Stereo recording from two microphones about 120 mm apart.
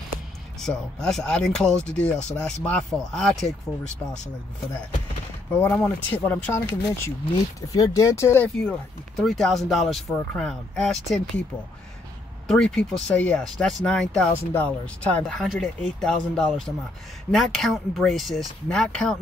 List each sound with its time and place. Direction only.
0.6 s speech: 5° left (ahead or behind)
5.5 s speech: 15° left (ahead or behind)
7.7 s speech: 30° left (ahead or behind)
8.5 s speech: 5° left (ahead or behind)
12.4 s speech: 5° left (ahead or behind)